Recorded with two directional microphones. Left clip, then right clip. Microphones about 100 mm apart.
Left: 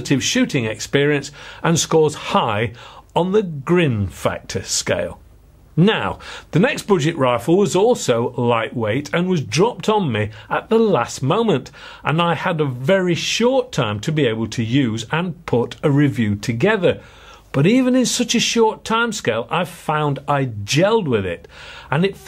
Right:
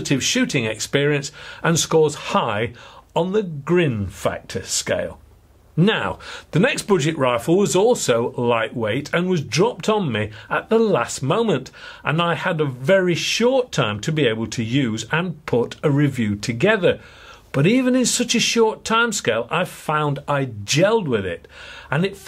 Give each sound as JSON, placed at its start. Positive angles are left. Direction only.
{"t": 0.0, "sound": "speech", "side_deg": 20}
{"t": 3.1, "sound": "speech", "side_deg": 50}
{"t": 5.8, "sound": "speech", "side_deg": 25}
{"t": 8.5, "sound": "speech", "side_deg": 25}
{"t": 13.5, "sound": "speech", "side_deg": 10}